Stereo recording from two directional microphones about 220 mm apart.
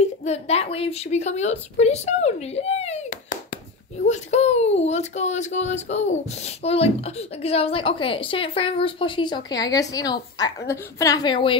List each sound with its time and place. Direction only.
0.2 s speech: 30° left (ahead or behind)